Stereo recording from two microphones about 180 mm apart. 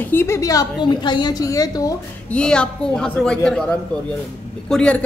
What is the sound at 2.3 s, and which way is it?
A man's voice, 5° left (ahead or behind).